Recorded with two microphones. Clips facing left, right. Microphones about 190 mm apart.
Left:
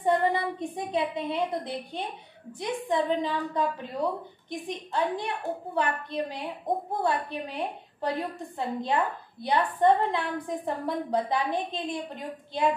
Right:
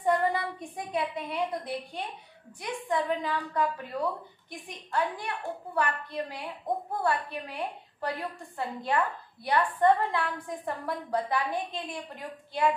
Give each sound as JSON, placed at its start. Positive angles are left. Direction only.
{"t": 0.0, "sound": "a woman's voice", "side_deg": 25}